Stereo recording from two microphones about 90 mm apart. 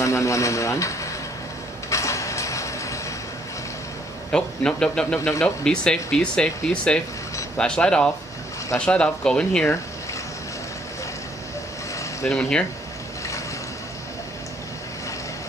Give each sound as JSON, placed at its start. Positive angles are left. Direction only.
{"t": 0.0, "sound": "speech", "side_deg": 35}
{"t": 1.9, "sound": "a sound", "side_deg": 35}
{"t": 4.3, "sound": "speech", "side_deg": 10}
{"t": 12.3, "sound": "speech", "side_deg": 10}